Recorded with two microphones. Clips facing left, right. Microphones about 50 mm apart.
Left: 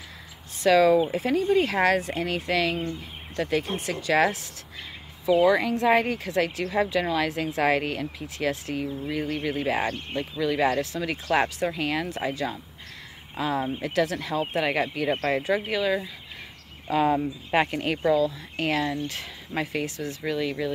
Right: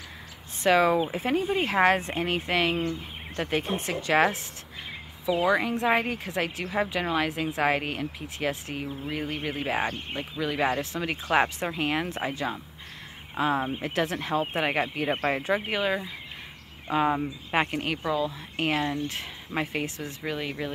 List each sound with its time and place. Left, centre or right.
0.7 s speech: right
5.3 s speech: centre; by 13.7 s right
13.7 s speech: centre
13.9 s speech: right; by 17.9 s centre
18.1 s speech: right